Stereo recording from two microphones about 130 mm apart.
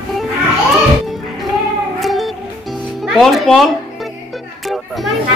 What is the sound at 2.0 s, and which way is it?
Music, centre (ahead or behind).